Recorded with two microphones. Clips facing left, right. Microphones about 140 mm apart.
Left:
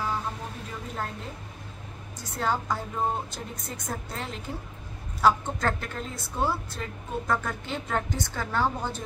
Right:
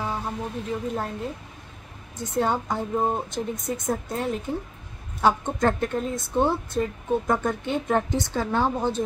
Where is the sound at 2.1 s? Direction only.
25° right (ahead or behind).